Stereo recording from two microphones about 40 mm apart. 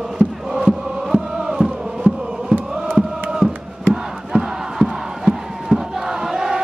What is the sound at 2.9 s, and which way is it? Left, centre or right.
Chant, centre.